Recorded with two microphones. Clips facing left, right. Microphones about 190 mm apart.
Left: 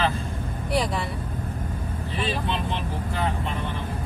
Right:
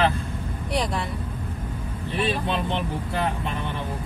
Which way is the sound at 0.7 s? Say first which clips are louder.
Left 1 dB; 5° left (ahead or behind).